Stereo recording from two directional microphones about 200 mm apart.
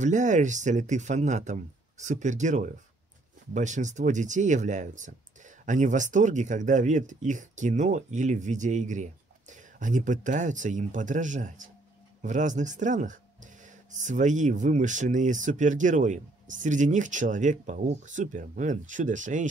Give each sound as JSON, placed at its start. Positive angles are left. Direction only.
{"t": 0.0, "sound": "speech", "side_deg": -35}